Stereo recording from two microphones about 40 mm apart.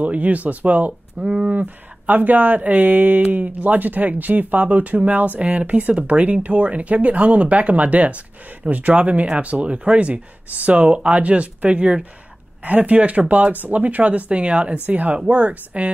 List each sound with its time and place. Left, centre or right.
0.0 s speech: right
1.2 s speech: right
1.5 s speech: right